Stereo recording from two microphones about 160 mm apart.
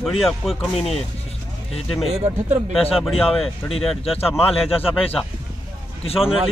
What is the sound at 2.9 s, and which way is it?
A man's voice, centre (ahead or behind).